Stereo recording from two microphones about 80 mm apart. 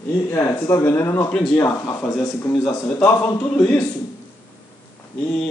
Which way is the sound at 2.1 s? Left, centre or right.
Centre.